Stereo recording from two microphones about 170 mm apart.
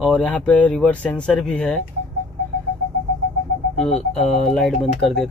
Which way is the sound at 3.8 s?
5° left (ahead or behind).